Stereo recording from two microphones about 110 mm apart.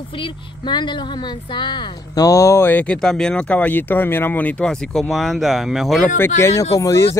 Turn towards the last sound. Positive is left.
turn(degrees=25)  # may be behind; listen again after turning